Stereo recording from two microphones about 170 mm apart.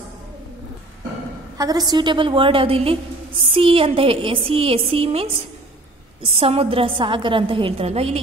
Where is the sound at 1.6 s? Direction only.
20° right (ahead or behind).